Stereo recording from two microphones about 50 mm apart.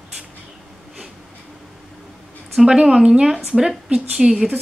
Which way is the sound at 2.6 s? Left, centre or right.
Centre.